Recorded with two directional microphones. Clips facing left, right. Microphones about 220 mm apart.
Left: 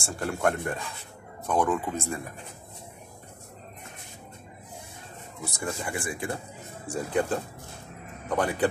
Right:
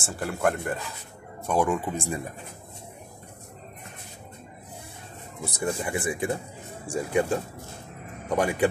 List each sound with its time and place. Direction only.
0.0 s speech: 5° right (ahead or behind)
5.7 s speech: 25° right (ahead or behind)
6.9 s speech: 10° right (ahead or behind)